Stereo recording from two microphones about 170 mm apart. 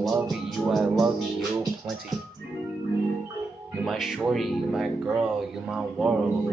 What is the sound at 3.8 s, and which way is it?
Music, centre (ahead or behind).